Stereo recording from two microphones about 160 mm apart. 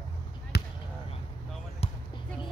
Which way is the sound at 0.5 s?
90° left.